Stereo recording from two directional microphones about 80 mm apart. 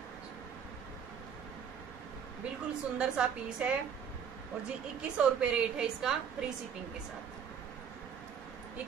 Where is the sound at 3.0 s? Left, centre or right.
Centre.